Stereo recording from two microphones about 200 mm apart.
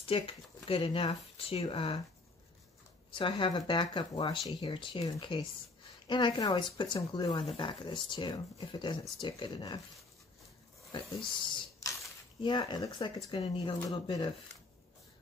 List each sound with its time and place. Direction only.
0.0 s speech: 30° left (ahead or behind)
3.1 s speech: 25° left (ahead or behind)
11.4 s a sound: 25° left (ahead or behind)
12.4 s speech: 20° left (ahead or behind)